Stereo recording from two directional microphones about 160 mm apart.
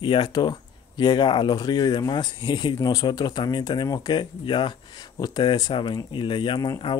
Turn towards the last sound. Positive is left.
turn(degrees=25)  # may be behind; listen again after turning